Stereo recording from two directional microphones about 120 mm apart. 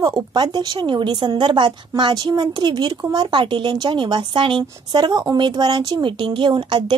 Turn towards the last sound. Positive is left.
turn(degrees=-40)  # may be behind; listen again after turning